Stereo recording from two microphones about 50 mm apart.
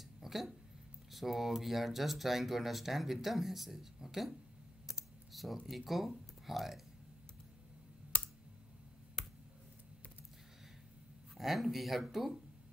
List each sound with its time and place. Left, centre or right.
0.2 s a sound: centre
1.1 s speech: centre
4.8 s computer keyboard: centre
8.1 s clicking: left
9.2 s clicking: centre
11.3 s speech: centre